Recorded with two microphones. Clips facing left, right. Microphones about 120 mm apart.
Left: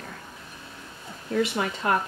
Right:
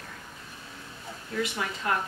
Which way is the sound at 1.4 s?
35° left (ahead or behind).